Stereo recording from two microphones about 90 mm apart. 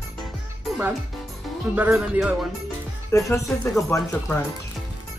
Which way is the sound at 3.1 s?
35° left (ahead or behind).